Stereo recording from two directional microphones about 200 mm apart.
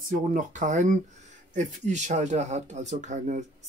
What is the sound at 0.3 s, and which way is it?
Speech, 40° right (ahead or behind).